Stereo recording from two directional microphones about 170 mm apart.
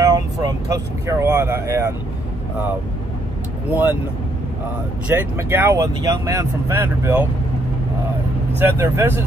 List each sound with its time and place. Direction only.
0.0 s speech: 20° right (ahead or behind)
3.7 s speech: 10° right (ahead or behind)
5.1 s speech: 15° right (ahead or behind)
8.5 s speech: 15° right (ahead or behind)